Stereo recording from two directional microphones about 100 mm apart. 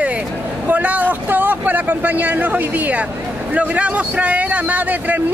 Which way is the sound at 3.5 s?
10° right (ahead or behind).